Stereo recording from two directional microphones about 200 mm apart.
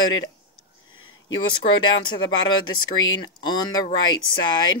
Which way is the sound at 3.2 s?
20° left (ahead or behind).